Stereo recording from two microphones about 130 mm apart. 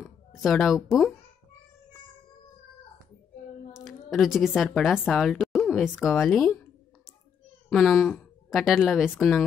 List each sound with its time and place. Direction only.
0.3 s a woman's voice: centre (ahead or behind)
3.7 s a sound: centre (ahead or behind)
4.6 s a woman's voice: centre (ahead or behind)
5.6 s a sound: 10° left (ahead or behind)
5.9 s a woman's voice: centre (ahead or behind)
7.7 s a woman's voice: centre (ahead or behind)